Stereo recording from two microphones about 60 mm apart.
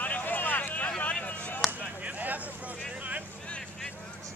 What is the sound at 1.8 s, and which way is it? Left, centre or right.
Vehicle, right.